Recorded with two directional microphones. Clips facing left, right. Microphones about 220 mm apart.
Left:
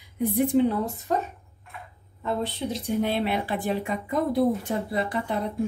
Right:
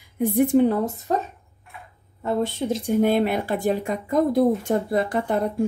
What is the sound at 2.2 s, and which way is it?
A woman's voice, 45° right (ahead or behind).